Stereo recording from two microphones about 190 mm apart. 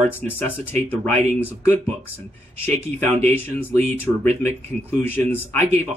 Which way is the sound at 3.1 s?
35° right (ahead or behind).